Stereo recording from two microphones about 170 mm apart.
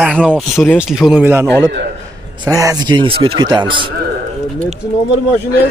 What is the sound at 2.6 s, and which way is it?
A man's voice, 20° right (ahead or behind).